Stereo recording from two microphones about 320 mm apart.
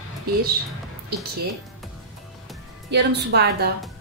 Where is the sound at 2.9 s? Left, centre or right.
Right.